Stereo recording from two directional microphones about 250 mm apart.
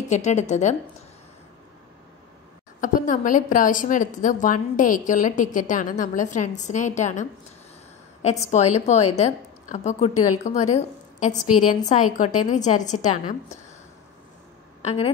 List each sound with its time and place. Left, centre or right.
0.1 s a woman's voice: left
2.8 s a woman's voice: left
8.5 s a woman's voice: left
11.4 s a woman's voice: left
11.8 s a woman's voice: left
14.8 s a woman's voice: left